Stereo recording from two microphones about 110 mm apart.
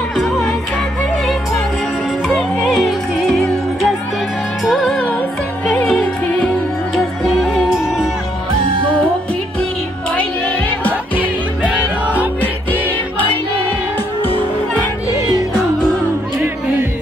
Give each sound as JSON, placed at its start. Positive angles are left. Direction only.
{"t": 0.1, "sound": "music", "side_deg": 5}
{"t": 2.2, "sound": "music", "side_deg": 0}
{"t": 10.1, "sound": "music", "side_deg": 15}
{"t": 11.1, "sound": "music", "side_deg": -15}
{"t": 12.4, "sound": "music", "side_deg": 15}